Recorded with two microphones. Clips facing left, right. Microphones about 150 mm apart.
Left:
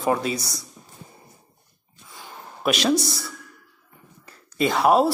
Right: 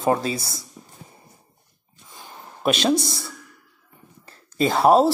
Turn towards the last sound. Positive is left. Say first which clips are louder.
# right 2 dB
turn(degrees=-30)  # may be behind; listen again after turning